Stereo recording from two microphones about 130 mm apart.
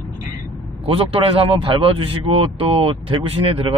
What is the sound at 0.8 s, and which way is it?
A man's voice, 45° right (ahead or behind).